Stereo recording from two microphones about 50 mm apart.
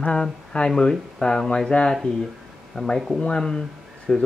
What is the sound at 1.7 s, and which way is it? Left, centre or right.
Speech, left.